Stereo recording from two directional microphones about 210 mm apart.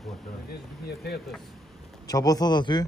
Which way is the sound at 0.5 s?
50° left (ahead or behind).